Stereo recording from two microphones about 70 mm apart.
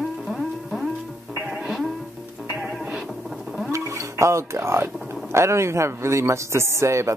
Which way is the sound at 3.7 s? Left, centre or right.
Right.